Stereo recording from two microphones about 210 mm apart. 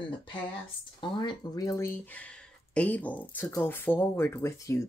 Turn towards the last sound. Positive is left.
turn(degrees=15)  # may be behind; listen again after turning